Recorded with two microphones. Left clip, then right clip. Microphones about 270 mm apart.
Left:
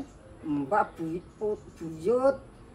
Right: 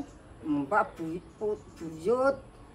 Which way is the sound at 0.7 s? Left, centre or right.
Centre.